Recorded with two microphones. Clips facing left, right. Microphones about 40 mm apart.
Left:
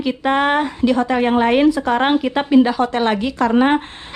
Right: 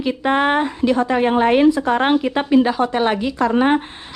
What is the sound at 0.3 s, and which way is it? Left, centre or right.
Speech, left.